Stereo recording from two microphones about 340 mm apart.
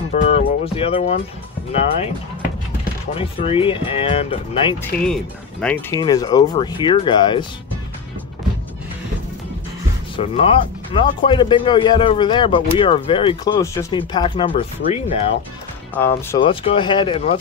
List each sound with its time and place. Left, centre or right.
0.1 s speech: left
3.2 s speech: centre
5.0 s speech: centre
10.1 s speech: centre
15.9 s speech: centre